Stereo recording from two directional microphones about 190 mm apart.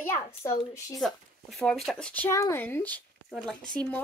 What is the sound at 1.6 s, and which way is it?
Speech, centre (ahead or behind).